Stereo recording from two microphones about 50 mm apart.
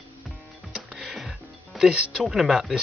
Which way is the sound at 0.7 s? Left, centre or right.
Centre.